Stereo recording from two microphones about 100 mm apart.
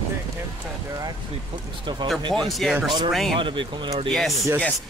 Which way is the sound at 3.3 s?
55° right (ahead or behind).